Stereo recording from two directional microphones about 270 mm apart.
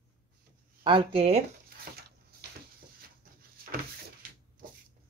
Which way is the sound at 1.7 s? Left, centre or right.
Right.